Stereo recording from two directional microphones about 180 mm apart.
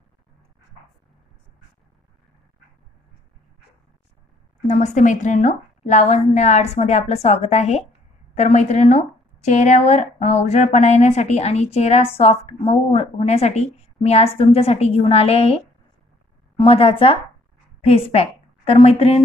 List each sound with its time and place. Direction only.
4.6 s a woman's voice: 40° left (ahead or behind)